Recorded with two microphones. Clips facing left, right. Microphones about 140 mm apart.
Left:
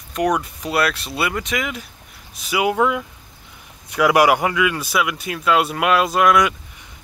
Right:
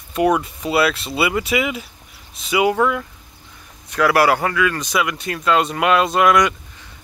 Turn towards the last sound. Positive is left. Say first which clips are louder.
# right 1 dB
turn(degrees=0)  # may be behind; listen again after turning